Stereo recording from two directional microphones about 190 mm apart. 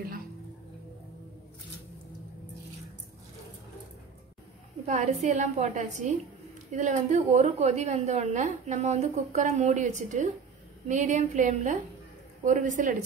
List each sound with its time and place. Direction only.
4.8 s a woman's voice: 35° right (ahead or behind)